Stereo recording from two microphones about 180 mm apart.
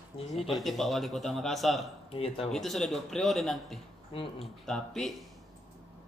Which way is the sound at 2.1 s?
30° left (ahead or behind).